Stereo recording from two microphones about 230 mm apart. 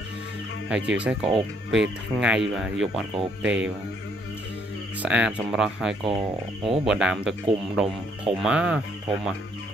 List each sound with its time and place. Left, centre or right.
0.7 s speech: centre
5.0 s speech: centre
6.0 s speech: right
6.9 s speech: centre